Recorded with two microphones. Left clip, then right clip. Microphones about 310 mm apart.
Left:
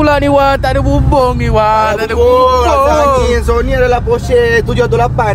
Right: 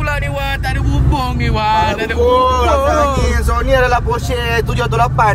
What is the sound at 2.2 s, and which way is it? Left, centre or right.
Speech, left.